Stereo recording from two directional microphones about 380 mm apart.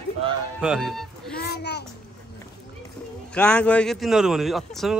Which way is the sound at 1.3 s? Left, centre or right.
Left.